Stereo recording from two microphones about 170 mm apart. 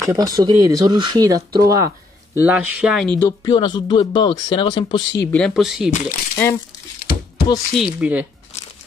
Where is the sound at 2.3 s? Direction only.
10° right (ahead or behind).